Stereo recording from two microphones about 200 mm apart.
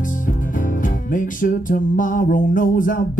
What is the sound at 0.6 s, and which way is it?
Music, 40° left (ahead or behind).